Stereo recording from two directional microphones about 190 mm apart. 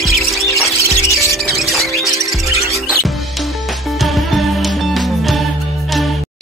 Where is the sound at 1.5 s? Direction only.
Centre (ahead or behind).